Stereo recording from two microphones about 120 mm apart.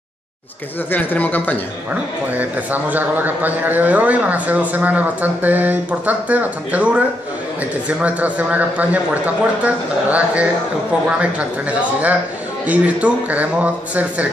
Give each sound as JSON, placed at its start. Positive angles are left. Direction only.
{"t": 0.9, "sound": "speech", "side_deg": 15}
{"t": 2.3, "sound": "a man's voice", "side_deg": -15}
{"t": 8.0, "sound": "a man's voice", "side_deg": -10}